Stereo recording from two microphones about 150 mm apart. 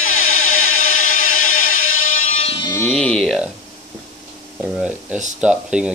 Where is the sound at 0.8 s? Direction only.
65° left (ahead or behind).